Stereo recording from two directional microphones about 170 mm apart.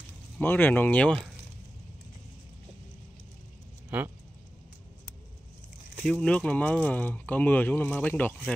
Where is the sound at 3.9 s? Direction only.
10° right (ahead or behind).